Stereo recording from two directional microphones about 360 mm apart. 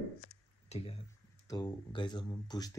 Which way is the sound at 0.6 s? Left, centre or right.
Centre.